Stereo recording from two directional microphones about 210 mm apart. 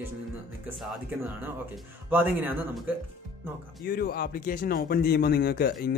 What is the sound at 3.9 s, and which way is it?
Speech, 45° left (ahead or behind).